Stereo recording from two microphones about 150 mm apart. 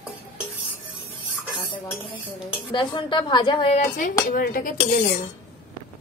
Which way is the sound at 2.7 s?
30° left (ahead or behind).